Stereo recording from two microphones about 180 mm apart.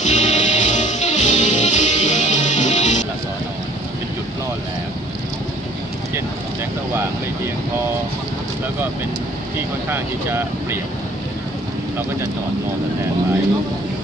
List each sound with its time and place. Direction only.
0.0 s music: 40° left (ahead or behind)
9.8 s speech: 10° right (ahead or behind)